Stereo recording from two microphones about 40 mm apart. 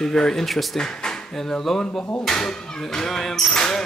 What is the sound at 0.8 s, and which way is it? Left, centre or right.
Speech, centre.